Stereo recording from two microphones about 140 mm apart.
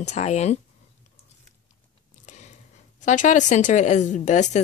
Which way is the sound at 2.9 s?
60° left (ahead or behind).